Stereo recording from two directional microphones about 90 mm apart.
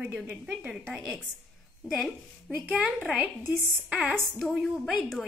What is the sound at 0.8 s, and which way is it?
A woman's voice, centre (ahead or behind).